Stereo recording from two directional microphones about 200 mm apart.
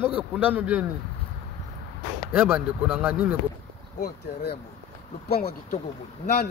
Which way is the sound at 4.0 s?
55° left (ahead or behind).